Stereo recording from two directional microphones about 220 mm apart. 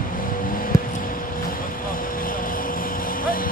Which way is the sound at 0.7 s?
15° left (ahead or behind).